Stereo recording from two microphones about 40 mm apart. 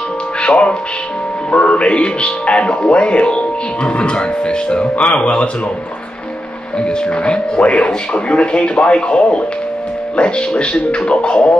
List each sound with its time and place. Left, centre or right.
0.4 s speech: left
6.8 s speech: left